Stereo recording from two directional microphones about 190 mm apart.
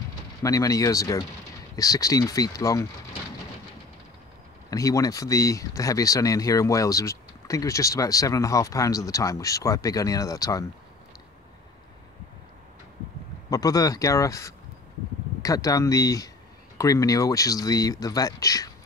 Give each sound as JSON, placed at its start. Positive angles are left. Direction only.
{"t": 0.4, "sound": "speech", "side_deg": 15}
{"t": 4.6, "sound": "speech", "side_deg": 15}
{"t": 13.5, "sound": "speech", "side_deg": 20}